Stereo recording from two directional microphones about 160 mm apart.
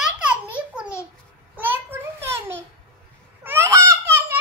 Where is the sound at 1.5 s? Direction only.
10° right (ahead or behind).